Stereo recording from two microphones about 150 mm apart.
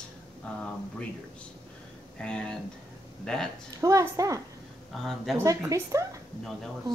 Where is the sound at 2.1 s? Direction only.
5° left (ahead or behind).